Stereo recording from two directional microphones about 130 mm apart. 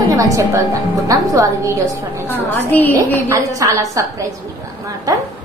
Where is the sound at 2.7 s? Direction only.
15° left (ahead or behind).